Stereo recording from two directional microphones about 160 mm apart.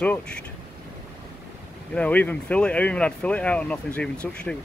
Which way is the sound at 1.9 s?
10° left (ahead or behind).